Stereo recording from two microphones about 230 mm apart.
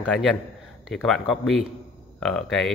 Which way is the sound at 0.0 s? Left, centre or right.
Centre.